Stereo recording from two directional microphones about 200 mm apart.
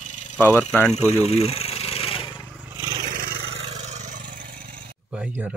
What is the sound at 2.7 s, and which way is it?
Vehicle, 15° right (ahead or behind).